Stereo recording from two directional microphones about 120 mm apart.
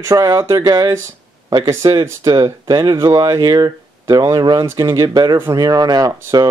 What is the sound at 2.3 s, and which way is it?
Speech, 35° right (ahead or behind).